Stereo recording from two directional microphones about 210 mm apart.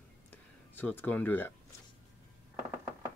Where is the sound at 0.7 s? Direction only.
10° left (ahead or behind).